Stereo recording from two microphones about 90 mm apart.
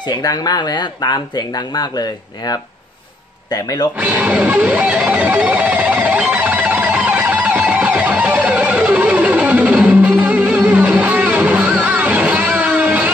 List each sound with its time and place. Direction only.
0.1 s speech: 50° left (ahead or behind)
4.0 s music: 20° right (ahead or behind)